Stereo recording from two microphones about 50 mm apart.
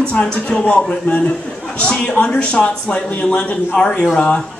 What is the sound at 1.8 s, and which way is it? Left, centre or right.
Speech, centre.